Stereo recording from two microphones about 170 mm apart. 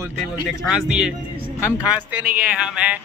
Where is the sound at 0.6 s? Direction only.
5° right (ahead or behind).